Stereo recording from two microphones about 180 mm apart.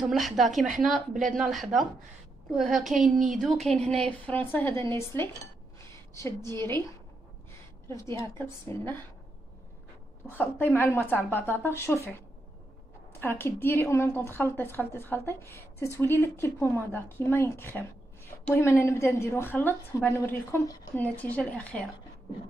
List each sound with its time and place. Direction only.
0.0 s a woman's voice: centre (ahead or behind)
8.2 s a woman's voice: 15° left (ahead or behind)
10.2 s a woman's voice: 10° left (ahead or behind)
13.2 s a woman's voice: 10° left (ahead or behind)